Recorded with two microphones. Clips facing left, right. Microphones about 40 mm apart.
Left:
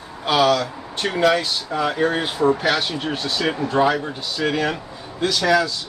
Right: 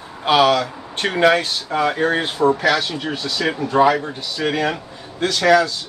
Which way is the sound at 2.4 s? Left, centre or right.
Right.